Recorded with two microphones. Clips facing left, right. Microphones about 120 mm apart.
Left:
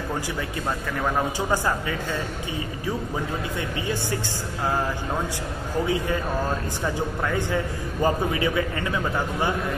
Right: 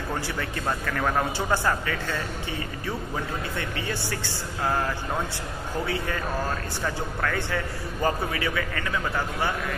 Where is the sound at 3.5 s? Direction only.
15° left (ahead or behind).